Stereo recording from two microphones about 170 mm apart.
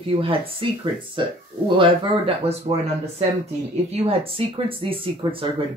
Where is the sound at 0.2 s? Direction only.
30° right (ahead or behind).